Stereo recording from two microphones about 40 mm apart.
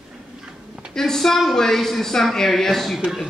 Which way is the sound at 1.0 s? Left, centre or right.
Centre.